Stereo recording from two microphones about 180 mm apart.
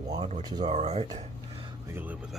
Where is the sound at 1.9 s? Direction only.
10° right (ahead or behind).